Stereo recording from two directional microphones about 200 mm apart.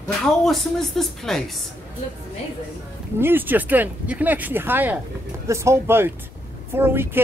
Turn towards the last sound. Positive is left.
turn(degrees=-10)  # may be behind; listen again after turning